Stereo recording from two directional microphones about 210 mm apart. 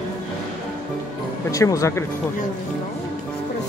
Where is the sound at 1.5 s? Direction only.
15° left (ahead or behind).